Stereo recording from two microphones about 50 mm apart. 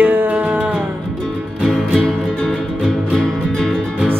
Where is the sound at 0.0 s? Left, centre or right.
Right.